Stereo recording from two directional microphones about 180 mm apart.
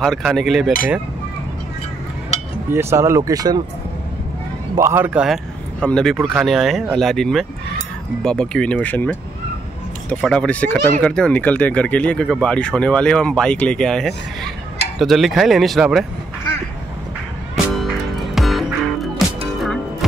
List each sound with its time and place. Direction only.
0.0 s speech: centre (ahead or behind)
2.7 s speech: 15° right (ahead or behind)
4.7 s speech: 15° right (ahead or behind)
18.3 s music: centre (ahead or behind)